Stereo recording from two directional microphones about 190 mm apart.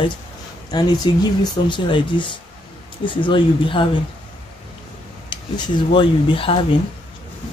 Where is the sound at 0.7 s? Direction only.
20° left (ahead or behind).